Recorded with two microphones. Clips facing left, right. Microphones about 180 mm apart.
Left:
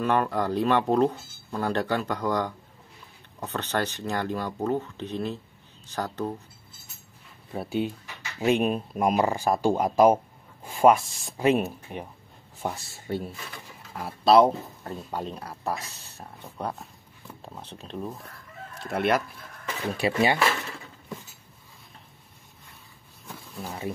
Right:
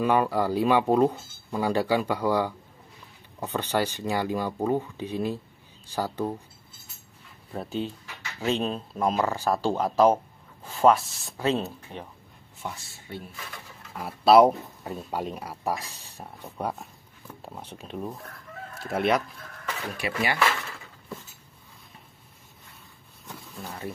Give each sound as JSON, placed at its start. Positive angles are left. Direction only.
{"t": 0.0, "sound": "speech", "side_deg": -10}
{"t": 7.5, "sound": "speech", "side_deg": 10}
{"t": 12.6, "sound": "speech", "side_deg": 40}
{"t": 13.9, "sound": "speech", "side_deg": -5}
{"t": 18.8, "sound": "chicken", "side_deg": 0}
{"t": 20.0, "sound": "speech", "side_deg": 30}
{"t": 23.2, "sound": "a sound", "side_deg": 0}